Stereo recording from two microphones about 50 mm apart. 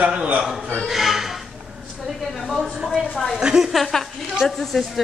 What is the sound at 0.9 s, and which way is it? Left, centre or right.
Speech, centre.